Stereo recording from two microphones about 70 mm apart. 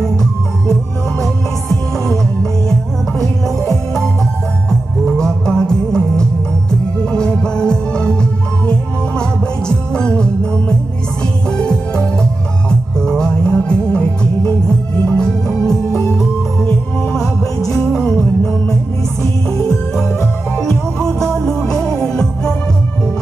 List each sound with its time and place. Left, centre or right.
0.0 s music: centre
3.2 s music: centre
9.7 s music: centre
11.7 s music: centre
17.9 s music: centre
20.5 s music: centre